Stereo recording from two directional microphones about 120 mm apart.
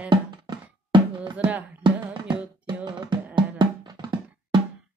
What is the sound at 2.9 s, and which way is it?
Music, 35° right (ahead or behind).